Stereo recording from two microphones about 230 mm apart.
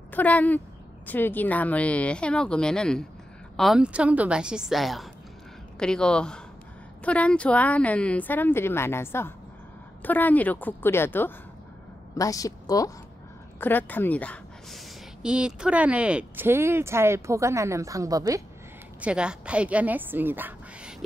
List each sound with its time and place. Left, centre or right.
0.1 s a woman's voice: centre